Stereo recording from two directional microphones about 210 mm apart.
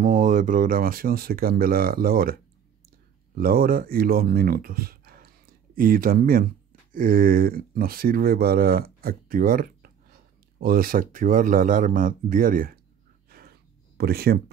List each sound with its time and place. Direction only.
0.0 s speech: 40° right (ahead or behind)
13.9 s speech: 50° right (ahead or behind)